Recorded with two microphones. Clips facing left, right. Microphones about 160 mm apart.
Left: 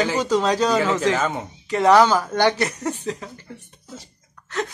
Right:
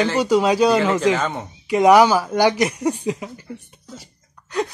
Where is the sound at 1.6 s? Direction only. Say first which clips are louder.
Right 2 dB; 10° right (ahead or behind).